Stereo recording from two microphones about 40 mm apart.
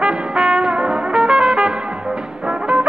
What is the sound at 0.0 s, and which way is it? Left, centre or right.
Music, right.